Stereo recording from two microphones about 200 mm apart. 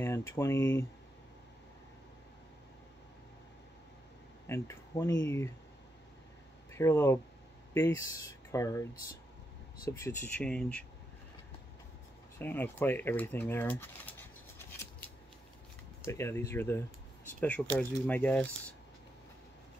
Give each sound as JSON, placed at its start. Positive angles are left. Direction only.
{"t": 0.3, "sound": "speech", "side_deg": 15}
{"t": 4.5, "sound": "speech", "side_deg": 15}
{"t": 6.7, "sound": "speech", "side_deg": 15}
{"t": 9.8, "sound": "speech", "side_deg": 15}
{"t": 12.4, "sound": "speech", "side_deg": 10}
{"t": 14.6, "sound": "a sound", "side_deg": 10}
{"t": 16.1, "sound": "speech", "side_deg": 15}